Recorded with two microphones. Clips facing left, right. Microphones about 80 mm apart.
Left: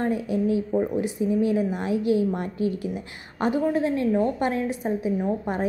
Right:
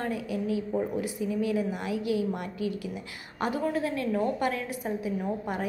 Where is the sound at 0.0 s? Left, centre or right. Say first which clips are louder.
Left 7 dB; left.